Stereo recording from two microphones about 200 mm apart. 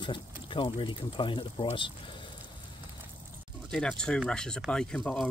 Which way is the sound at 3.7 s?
5° left (ahead or behind).